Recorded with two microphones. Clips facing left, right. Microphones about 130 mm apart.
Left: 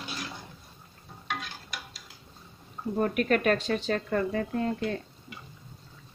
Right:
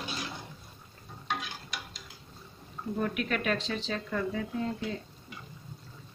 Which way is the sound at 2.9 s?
45° left (ahead or behind).